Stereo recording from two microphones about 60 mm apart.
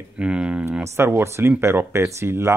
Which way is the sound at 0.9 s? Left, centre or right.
Right.